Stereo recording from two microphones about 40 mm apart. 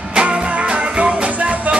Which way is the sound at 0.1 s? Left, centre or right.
Right.